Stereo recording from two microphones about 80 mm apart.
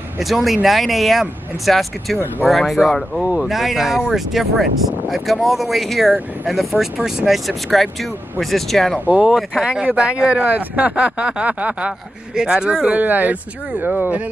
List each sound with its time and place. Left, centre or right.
0.2 s speech: centre
9.0 s speech: centre